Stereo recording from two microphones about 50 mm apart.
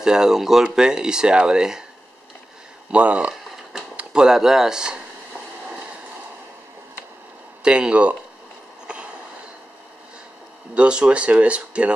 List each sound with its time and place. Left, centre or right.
0.0 s speech: centre
2.9 s speech: right
4.1 s speech: centre
7.6 s speech: centre
8.8 s a sound: right
10.7 s speech: right